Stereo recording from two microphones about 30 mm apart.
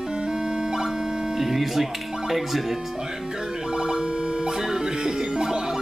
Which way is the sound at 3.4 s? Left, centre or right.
Right.